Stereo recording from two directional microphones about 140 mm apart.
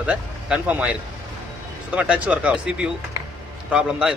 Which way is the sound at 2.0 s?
10° right (ahead or behind).